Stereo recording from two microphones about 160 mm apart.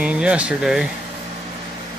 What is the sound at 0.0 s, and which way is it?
Speech, 5° right (ahead or behind).